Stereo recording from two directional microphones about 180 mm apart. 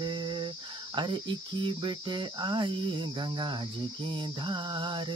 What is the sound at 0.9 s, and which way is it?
Cricket, 25° right (ahead or behind).